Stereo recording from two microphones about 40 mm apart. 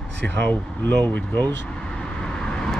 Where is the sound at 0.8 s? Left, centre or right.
Left.